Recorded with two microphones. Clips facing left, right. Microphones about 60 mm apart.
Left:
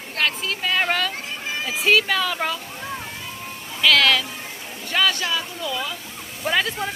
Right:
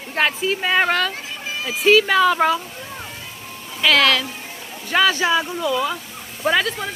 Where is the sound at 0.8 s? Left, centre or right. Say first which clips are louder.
Right 3 dB; centre.